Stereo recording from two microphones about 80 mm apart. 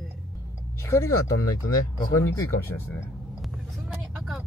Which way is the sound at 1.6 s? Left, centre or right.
Left.